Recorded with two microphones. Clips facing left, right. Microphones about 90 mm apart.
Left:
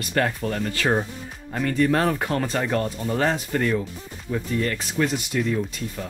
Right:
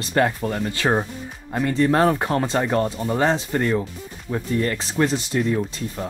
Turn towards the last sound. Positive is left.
turn(degrees=-30)  # may be behind; listen again after turning